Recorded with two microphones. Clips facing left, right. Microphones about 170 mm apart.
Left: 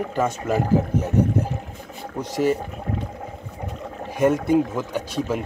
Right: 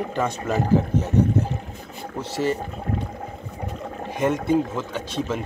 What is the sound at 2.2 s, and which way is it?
Speech, 15° left (ahead or behind).